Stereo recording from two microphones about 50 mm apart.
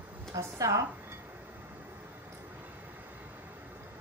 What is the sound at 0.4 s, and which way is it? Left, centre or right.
Speech, right.